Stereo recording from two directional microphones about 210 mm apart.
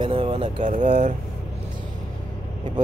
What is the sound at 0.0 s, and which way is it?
Speech, 30° right (ahead or behind).